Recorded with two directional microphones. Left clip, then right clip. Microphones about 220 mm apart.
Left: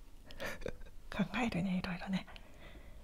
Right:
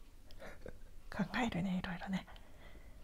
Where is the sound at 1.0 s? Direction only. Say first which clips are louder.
Left 1 dB; 5° left (ahead or behind).